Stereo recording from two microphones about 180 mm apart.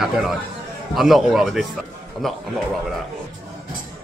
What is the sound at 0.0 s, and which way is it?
Speech, centre (ahead or behind).